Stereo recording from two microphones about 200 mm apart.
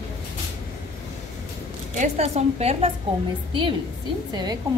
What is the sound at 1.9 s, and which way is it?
Speech, 35° right (ahead or behind).